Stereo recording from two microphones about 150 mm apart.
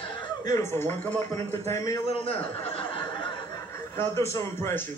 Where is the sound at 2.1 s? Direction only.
40° left (ahead or behind).